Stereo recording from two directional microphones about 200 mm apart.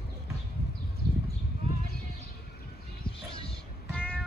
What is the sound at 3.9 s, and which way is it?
Cat, 5° left (ahead or behind).